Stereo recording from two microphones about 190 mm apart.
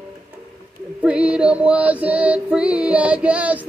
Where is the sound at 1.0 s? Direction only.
5° right (ahead or behind).